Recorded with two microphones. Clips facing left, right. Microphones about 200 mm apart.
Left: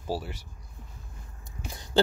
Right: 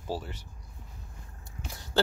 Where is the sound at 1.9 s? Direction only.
15° left (ahead or behind).